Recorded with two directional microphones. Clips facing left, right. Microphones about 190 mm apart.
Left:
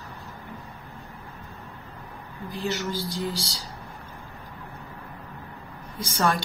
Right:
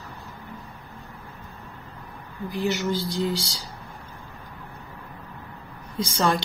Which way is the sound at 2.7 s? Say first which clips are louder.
Right 4 dB; 15° right (ahead or behind).